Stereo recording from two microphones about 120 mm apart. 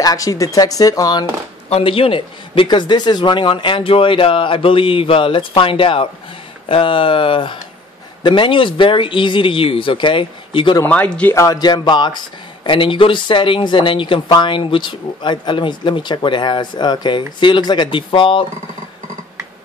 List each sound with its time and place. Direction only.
0.0 s speech: 30° left (ahead or behind)
1.7 s speech: 50° left (ahead or behind)
10.8 s speech: 15° left (ahead or behind)
11.3 s speech: 30° left (ahead or behind); by 18.4 s 45° left (ahead or behind)